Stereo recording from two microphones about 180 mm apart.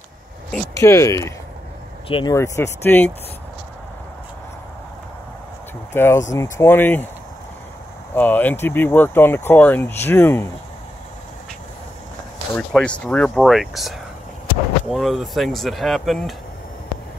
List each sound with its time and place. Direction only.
0.7 s speech: 15° left (ahead or behind)
2.0 s speech: 30° left (ahead or behind)
2.3 s speech: 15° left (ahead or behind)
5.9 s speech: 15° left (ahead or behind)
8.1 s speech: 10° left (ahead or behind)
12.5 s speech: 5° left (ahead or behind)